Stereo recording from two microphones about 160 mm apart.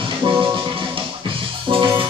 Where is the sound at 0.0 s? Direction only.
30° right (ahead or behind).